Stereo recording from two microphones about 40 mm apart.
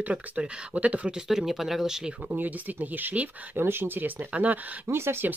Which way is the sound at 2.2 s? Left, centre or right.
Right.